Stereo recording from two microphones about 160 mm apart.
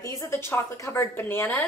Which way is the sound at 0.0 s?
20° left (ahead or behind).